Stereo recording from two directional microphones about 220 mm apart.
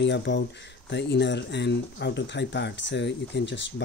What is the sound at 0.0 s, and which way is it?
Speech, 55° left (ahead or behind).